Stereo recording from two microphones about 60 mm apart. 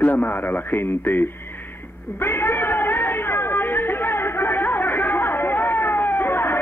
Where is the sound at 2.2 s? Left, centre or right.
Left.